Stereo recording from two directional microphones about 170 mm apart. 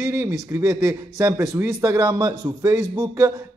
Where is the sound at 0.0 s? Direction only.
15° right (ahead or behind).